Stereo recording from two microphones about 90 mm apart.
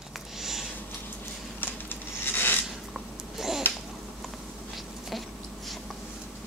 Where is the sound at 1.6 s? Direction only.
20° left (ahead or behind).